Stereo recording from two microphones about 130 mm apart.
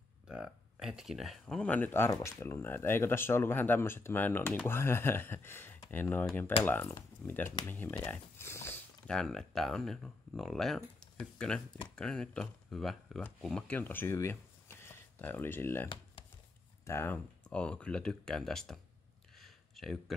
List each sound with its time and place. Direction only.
0.3 s speech: 5° right (ahead or behind); by 8.7 s 20° left (ahead or behind)
9.0 s speech: 5° left (ahead or behind)
19.3 s a sound: centre (ahead or behind)